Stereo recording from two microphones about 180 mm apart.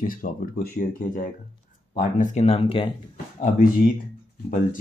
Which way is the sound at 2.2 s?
40° left (ahead or behind).